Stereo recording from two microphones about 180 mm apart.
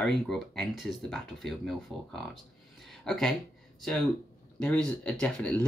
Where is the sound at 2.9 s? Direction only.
Centre (ahead or behind).